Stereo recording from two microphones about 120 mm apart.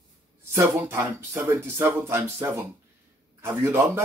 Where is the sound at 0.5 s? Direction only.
25° right (ahead or behind).